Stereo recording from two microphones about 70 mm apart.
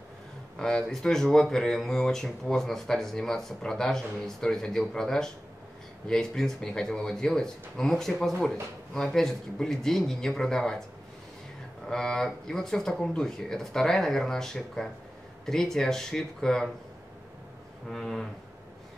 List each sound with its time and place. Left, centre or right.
0.6 s speech: centre
11.9 s speech: centre
17.8 s speech: centre